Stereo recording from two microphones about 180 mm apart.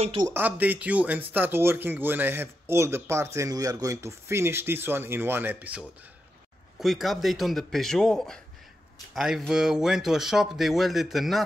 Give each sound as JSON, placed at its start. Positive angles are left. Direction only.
{"t": 0.0, "sound": "speech", "side_deg": -30}
{"t": 0.3, "sound": "speech", "side_deg": -10}